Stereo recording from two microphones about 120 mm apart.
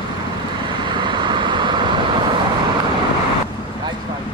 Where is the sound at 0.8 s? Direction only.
40° right (ahead or behind).